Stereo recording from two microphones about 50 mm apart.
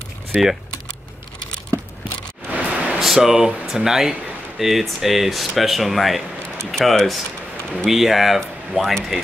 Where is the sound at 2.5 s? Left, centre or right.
Right.